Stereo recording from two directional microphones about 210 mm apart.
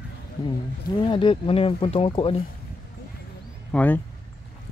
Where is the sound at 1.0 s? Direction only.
25° left (ahead or behind).